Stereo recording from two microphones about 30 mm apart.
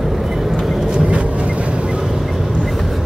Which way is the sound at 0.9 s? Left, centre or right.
Right.